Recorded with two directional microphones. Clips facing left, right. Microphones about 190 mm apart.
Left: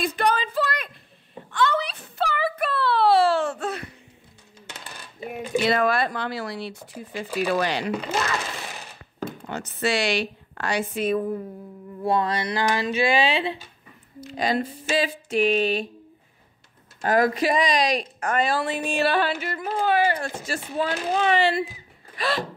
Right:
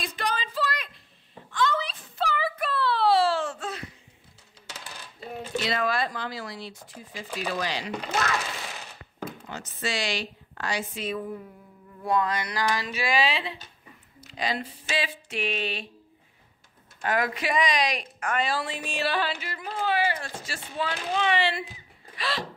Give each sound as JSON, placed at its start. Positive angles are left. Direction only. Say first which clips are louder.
{"t": 0.0, "sound": "a sound", "louder": "left 8 dB", "side_deg": 60}
{"t": 5.2, "sound": "mechanisms", "louder": "left 6 dB", "side_deg": 15}
{"t": 5.6, "sound": "a woman's voice", "louder": "left 6 dB", "side_deg": 55}
{"t": 9.5, "sound": "a woman's voice", "louder": "left 8 dB", "side_deg": 65}
{"t": 12.0, "sound": "speech", "louder": "left 3 dB", "side_deg": 30}
{"t": 14.3, "sound": "a woman's voice", "louder": "left 6 dB", "side_deg": 45}
{"t": 17.0, "sound": "a woman's voice", "louder": "left 7 dB", "side_deg": 35}
{"t": 22.1, "sound": "a sound", "louder": "left 6 dB", "side_deg": 50}